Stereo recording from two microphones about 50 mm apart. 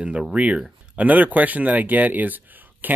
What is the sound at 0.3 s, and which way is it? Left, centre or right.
Speech, right.